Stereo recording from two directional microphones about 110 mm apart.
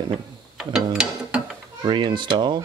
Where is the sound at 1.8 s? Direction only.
45° right (ahead or behind).